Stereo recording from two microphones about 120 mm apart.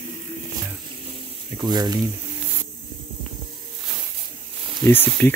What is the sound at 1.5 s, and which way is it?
Speech, 35° right (ahead or behind).